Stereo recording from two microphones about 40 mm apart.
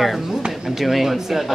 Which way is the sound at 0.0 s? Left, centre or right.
Centre.